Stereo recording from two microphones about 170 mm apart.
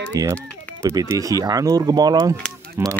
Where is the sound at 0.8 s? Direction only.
15° right (ahead or behind).